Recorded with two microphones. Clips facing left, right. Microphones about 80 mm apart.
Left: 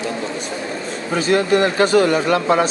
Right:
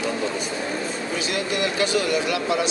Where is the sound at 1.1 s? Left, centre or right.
Left.